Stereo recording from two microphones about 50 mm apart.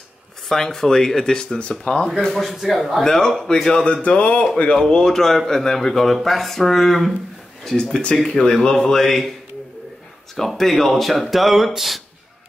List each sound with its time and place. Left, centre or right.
0.5 s speech: centre
2.2 s speech: centre
3.0 s speech: centre
3.8 s a sound: left
4.7 s speech: centre
7.7 s speech: centre
10.3 s speech: centre